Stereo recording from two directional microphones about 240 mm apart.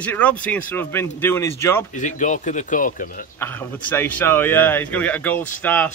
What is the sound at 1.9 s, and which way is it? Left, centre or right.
Speech, left.